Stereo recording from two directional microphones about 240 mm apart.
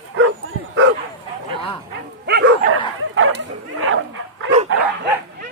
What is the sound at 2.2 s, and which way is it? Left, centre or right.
Dog, right.